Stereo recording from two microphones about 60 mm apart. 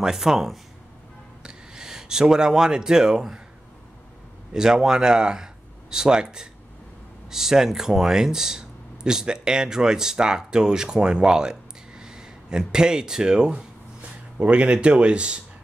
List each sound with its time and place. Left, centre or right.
0.0 s speech: centre
4.6 s speech: centre